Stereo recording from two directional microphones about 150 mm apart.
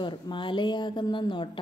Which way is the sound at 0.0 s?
30° left (ahead or behind).